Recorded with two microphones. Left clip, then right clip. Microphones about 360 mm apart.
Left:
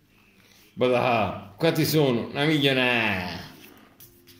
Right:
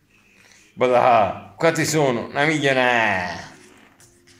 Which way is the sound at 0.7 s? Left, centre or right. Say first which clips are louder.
Right 7 dB; right.